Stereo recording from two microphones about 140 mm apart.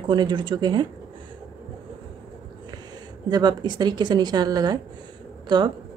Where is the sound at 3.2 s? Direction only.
30° right (ahead or behind).